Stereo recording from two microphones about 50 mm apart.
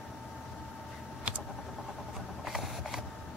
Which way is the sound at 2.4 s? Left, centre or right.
Centre.